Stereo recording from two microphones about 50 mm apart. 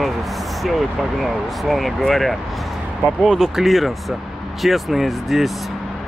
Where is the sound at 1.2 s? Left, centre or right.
Centre.